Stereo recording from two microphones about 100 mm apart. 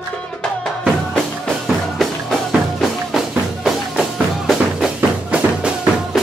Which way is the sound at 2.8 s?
Centre (ahead or behind).